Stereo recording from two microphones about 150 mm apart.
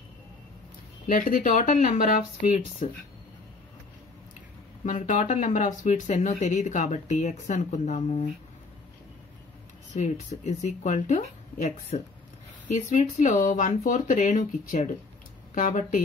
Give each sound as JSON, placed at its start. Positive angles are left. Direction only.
{"t": 1.0, "sound": "speech", "side_deg": 65}
{"t": 4.8, "sound": "speech", "side_deg": 60}
{"t": 9.9, "sound": "speech", "side_deg": 50}